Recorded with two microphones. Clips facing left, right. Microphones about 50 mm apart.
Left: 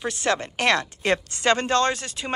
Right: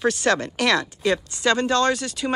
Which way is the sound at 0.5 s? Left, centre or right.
Left.